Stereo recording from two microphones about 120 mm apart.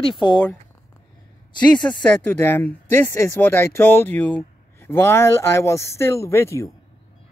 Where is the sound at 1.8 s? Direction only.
10° left (ahead or behind).